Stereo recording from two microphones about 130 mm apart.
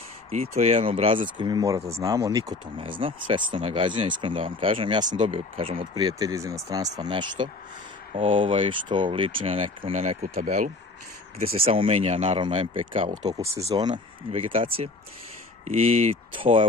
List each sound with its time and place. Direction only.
0.3 s speech: 55° right (ahead or behind); by 1.6 s 40° right (ahead or behind)
1.9 s speech: 25° right (ahead or behind)
2.8 s speech: 45° right (ahead or behind)
8.1 s speech: 45° right (ahead or behind); by 10.7 s 80° right
11.4 s speech: 45° right (ahead or behind)
14.3 s speech: 45° right (ahead or behind)